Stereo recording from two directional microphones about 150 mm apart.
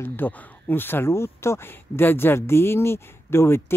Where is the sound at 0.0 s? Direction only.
15° left (ahead or behind).